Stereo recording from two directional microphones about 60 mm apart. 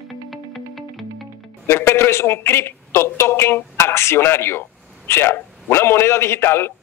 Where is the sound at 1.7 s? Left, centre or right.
Left.